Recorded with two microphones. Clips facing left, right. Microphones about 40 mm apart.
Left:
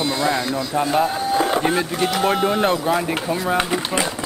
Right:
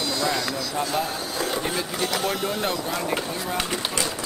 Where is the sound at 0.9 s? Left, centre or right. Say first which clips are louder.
Left 8 dB; left.